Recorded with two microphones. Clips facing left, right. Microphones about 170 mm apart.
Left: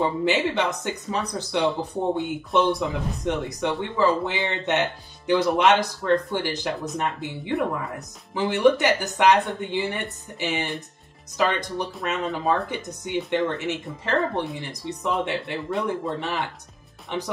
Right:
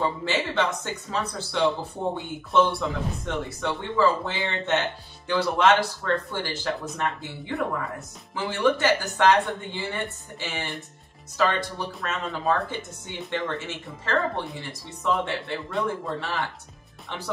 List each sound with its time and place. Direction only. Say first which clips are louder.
0.0 s speech: left 4 dB; 20° left (ahead or behind)